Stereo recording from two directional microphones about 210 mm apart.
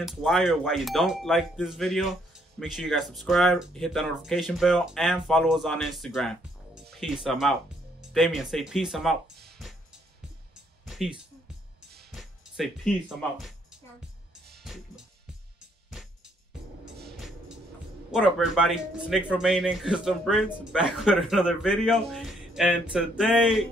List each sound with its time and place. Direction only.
0.0 s speech: centre (ahead or behind)
9.5 s music: centre (ahead or behind)
18.1 s speech: 5° right (ahead or behind)